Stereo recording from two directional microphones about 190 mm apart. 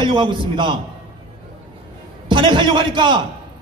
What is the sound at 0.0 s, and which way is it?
Speech, 25° right (ahead or behind).